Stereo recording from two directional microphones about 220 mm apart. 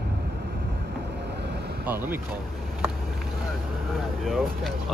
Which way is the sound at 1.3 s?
50° right (ahead or behind).